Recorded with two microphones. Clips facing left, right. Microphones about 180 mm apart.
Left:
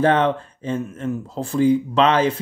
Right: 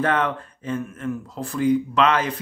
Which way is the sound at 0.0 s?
30° left (ahead or behind).